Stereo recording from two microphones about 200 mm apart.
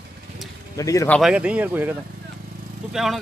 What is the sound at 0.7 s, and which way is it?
Speech, 15° left (ahead or behind).